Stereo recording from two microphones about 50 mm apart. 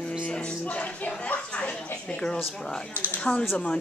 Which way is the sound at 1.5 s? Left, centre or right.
Left.